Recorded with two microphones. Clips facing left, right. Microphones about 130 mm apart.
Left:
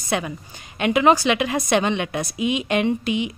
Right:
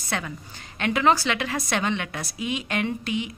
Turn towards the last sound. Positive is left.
turn(degrees=20)  # may be behind; listen again after turning